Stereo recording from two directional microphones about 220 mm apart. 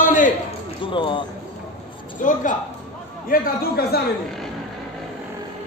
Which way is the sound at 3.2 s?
40° left (ahead or behind).